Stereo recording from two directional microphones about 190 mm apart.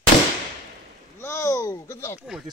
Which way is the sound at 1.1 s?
15° left (ahead or behind).